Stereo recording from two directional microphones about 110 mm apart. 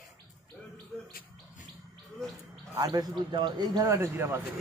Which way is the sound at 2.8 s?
35° right (ahead or behind).